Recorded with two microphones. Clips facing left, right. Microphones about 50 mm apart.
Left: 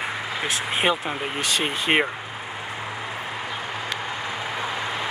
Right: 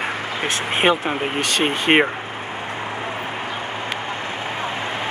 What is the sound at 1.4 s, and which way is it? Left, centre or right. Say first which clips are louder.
Speech: right 2 dB; right.